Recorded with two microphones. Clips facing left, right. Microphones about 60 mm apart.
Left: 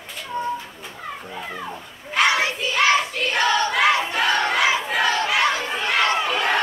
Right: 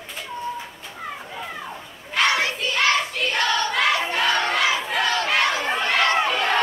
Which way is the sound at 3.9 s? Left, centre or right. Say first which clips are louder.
Left 2 dB; left.